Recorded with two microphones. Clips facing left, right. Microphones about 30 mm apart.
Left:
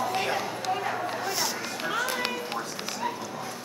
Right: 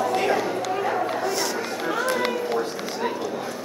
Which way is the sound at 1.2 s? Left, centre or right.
Centre.